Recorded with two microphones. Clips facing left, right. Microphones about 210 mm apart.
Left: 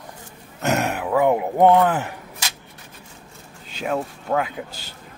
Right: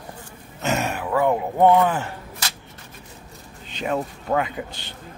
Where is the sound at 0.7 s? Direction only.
15° left (ahead or behind).